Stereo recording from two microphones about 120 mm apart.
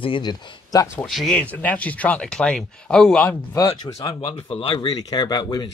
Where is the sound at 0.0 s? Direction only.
40° left (ahead or behind).